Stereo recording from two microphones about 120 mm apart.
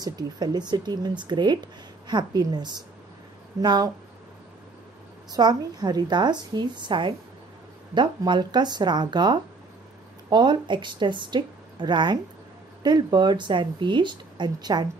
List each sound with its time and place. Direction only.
0.0 s speech: 35° right (ahead or behind)
5.3 s speech: 35° right (ahead or behind)